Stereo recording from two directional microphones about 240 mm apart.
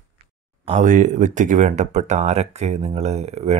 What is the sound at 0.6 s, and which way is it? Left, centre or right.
Speech, right.